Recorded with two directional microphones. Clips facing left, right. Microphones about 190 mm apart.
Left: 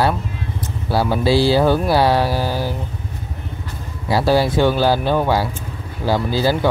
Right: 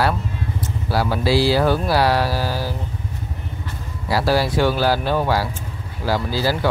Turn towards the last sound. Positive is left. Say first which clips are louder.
# left 3 dB
turn(degrees=25)  # may be behind; listen again after turning